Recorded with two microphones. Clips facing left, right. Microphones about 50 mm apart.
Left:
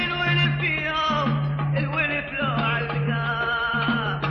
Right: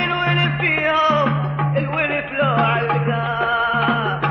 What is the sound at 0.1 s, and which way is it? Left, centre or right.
Music, right.